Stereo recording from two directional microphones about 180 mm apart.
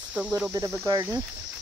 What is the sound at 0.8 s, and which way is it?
Speech, 20° right (ahead or behind).